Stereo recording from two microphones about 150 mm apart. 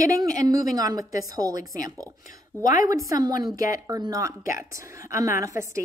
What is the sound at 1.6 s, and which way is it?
Speech, 70° left (ahead or behind).